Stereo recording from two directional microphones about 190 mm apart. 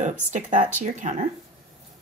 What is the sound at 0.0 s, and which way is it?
A woman's voice, 40° right (ahead or behind).